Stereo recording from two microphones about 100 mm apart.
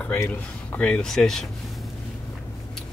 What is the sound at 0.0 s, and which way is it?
Speech, 20° left (ahead or behind).